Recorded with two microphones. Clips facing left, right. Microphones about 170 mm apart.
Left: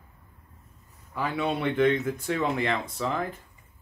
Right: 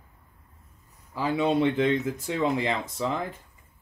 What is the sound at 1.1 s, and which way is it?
Speech, 25° right (ahead or behind).